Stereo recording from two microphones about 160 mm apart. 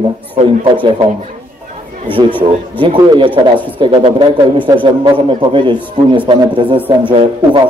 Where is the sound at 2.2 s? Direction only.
25° right (ahead or behind).